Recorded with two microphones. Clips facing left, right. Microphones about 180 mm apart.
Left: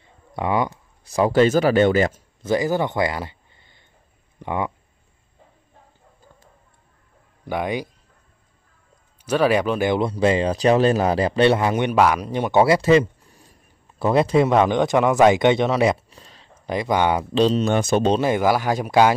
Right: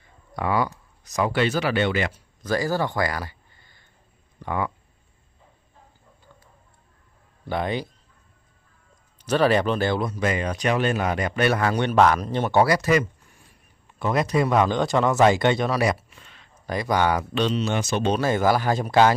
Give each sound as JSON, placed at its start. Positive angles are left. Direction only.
{"t": 0.4, "sound": "speech", "side_deg": 20}
{"t": 2.4, "sound": "speech", "side_deg": 20}
{"t": 7.4, "sound": "speech", "side_deg": 10}
{"t": 9.2, "sound": "speech", "side_deg": 10}
{"t": 10.0, "sound": "speech", "side_deg": 30}
{"t": 11.9, "sound": "speech", "side_deg": 10}
{"t": 12.6, "sound": "speech", "side_deg": 25}
{"t": 16.6, "sound": "speech", "side_deg": 20}
{"t": 17.6, "sound": "speech", "side_deg": 50}
{"t": 18.2, "sound": "speech", "side_deg": 15}